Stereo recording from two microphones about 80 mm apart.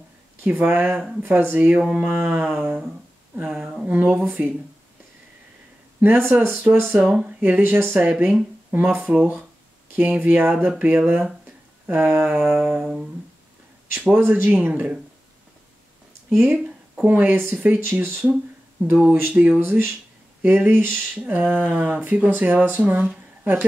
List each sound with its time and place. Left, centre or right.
0.4 s speech: right
5.9 s speech: right
11.4 s a sound: right
12.3 s speech: centre
14.1 s speech: right
16.3 s a sound: centre
17.0 s speech: right